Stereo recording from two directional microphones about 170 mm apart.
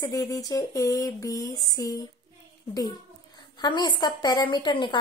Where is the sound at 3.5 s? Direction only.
25° left (ahead or behind).